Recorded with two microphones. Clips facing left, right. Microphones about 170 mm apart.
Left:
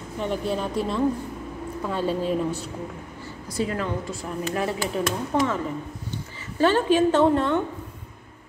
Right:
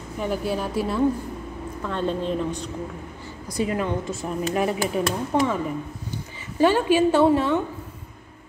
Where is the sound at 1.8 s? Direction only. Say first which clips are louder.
Even; 5° left (ahead or behind).